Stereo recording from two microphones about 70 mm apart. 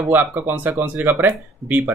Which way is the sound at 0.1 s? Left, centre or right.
Right.